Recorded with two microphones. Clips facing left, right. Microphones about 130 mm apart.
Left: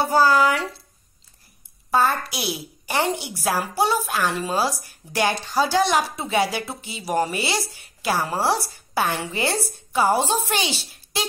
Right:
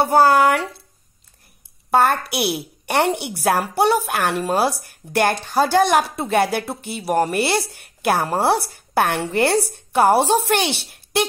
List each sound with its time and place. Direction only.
0.0 s speech: 55° right (ahead or behind)
1.9 s speech: 60° right (ahead or behind)